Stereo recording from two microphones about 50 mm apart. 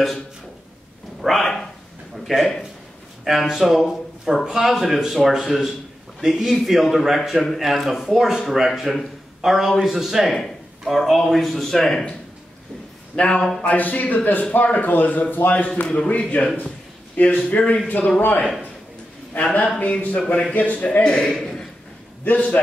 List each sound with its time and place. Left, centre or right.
1.2 s a sound: centre
3.3 s a man's voice: centre
6.5 s a man's voice: centre
13.7 s a man's voice: left
21.0 s a man's voice: centre